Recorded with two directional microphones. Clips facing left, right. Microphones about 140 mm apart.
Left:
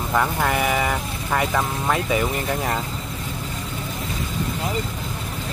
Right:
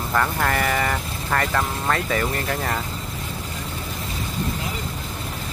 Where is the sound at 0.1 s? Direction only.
10° left (ahead or behind).